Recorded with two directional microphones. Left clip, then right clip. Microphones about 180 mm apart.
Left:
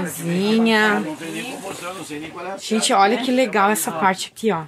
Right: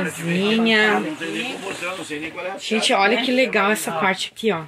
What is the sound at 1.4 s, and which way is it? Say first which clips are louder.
Speech: right 2 dB; 90° left.